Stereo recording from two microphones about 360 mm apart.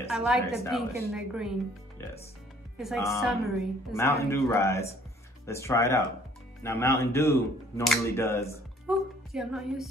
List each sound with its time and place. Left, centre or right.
0.0 s a woman's voice: centre
2.8 s a woman's voice: centre